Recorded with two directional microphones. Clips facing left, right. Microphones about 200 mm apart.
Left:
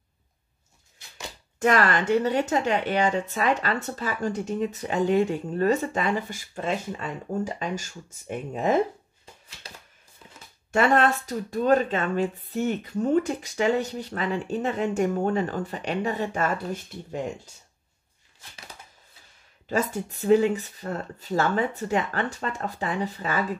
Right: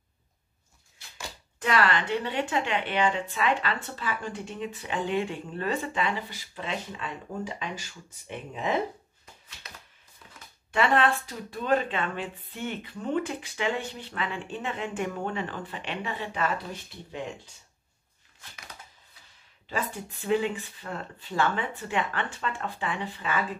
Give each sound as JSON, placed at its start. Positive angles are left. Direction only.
{"t": 1.6, "sound": "speech", "side_deg": 45}
{"t": 9.6, "sound": "shuffling cards", "side_deg": 30}
{"t": 10.7, "sound": "speech", "side_deg": 45}
{"t": 19.7, "sound": "speech", "side_deg": 45}